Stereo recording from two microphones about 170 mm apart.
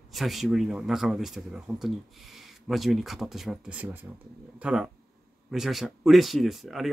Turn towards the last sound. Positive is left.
turn(degrees=0)  # may be behind; listen again after turning